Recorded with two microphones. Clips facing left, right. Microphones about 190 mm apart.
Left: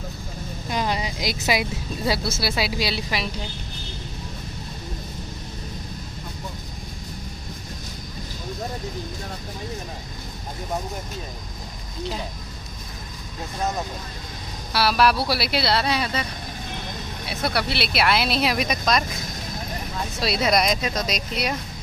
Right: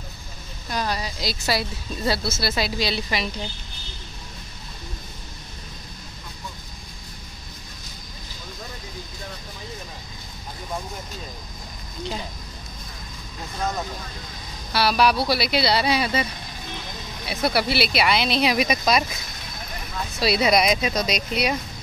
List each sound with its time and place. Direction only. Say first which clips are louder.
0.7 s speech: left 1 dB; 20° left (ahead or behind)
14.7 s speech: even; centre (ahead or behind)
17.3 s speech: right 3 dB; centre (ahead or behind)
20.2 s speech: right 2 dB; centre (ahead or behind)